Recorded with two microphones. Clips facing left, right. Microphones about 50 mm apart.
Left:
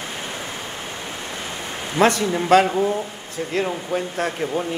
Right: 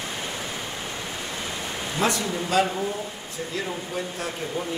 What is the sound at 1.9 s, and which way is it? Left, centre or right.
Speech, left.